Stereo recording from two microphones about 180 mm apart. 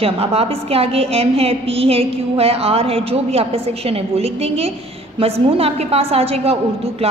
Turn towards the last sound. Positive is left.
turn(degrees=-35)  # may be behind; listen again after turning